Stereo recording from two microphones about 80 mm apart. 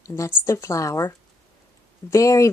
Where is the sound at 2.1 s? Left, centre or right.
Left.